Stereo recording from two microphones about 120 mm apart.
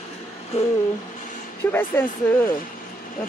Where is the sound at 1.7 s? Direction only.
15° left (ahead or behind).